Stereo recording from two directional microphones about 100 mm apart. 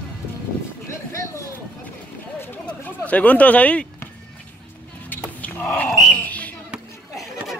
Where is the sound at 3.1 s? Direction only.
15° left (ahead or behind).